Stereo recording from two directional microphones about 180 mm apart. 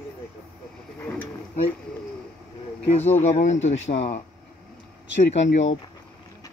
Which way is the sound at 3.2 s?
40° left (ahead or behind).